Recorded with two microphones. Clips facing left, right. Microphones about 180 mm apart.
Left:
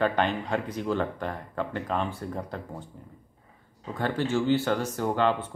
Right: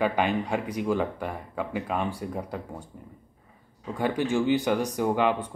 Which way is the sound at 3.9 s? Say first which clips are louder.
Right 2 dB; 15° right (ahead or behind).